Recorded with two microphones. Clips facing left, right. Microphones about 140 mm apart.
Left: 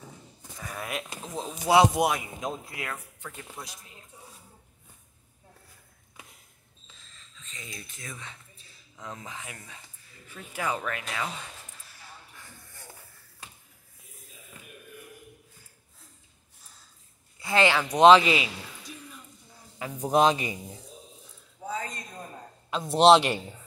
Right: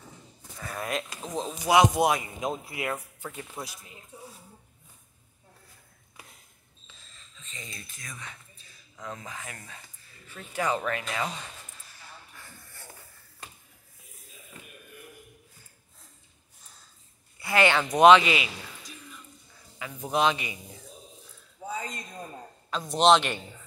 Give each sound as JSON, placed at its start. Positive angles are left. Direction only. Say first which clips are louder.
{"t": 0.6, "sound": "a sound", "louder": "right 3 dB", "side_deg": 5}
{"t": 1.6, "sound": "speech", "louder": "left 1 dB", "side_deg": 30}
{"t": 2.0, "sound": "speech", "louder": "right 2 dB", "side_deg": -5}
{"t": 7.4, "sound": "a sound", "louder": "right 1 dB", "side_deg": 0}
{"t": 7.7, "sound": "speech", "louder": "left 2 dB", "side_deg": 20}
{"t": 17.4, "sound": "speech", "louder": "even", "side_deg": 15}
{"t": 18.0, "sound": "a man's voice", "louder": "left 1 dB", "side_deg": 35}
{"t": 20.0, "sound": "a man's voice", "louder": "left 4 dB", "side_deg": 40}
{"t": 21.6, "sound": "a sound", "louder": "left 1 dB", "side_deg": -15}
{"t": 22.7, "sound": "a man's voice", "louder": "left 3 dB", "side_deg": 25}